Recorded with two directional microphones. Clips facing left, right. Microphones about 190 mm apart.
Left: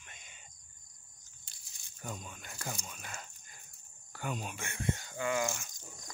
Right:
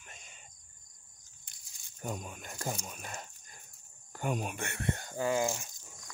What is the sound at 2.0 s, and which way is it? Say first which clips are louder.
Speech: right 5 dB; 50° right (ahead or behind).